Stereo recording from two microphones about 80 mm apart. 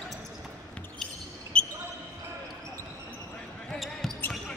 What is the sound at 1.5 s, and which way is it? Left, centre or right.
Basketball bounce, centre.